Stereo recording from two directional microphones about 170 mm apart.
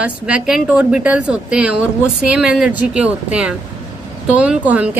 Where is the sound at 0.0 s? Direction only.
5° right (ahead or behind).